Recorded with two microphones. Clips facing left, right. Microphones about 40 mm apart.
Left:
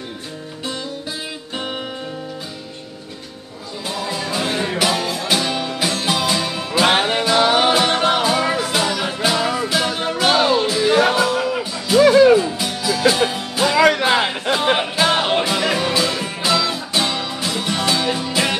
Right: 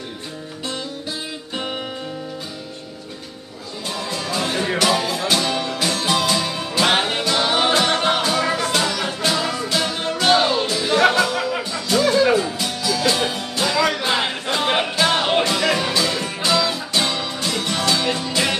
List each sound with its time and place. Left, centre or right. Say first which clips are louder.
4.1 s music: left 1 dB; centre
4.8 s music: right 1 dB; centre
12.0 s music: left 7 dB; left
12.4 s music: left 2 dB; centre